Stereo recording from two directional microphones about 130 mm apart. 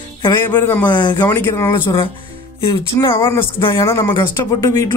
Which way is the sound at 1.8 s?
40° left (ahead or behind).